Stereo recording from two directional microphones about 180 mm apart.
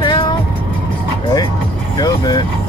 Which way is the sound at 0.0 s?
25° left (ahead or behind).